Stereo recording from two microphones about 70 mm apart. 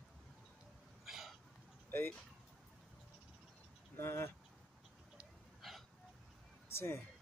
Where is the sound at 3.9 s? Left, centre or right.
Left.